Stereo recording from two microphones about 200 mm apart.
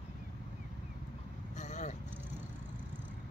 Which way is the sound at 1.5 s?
35° left (ahead or behind).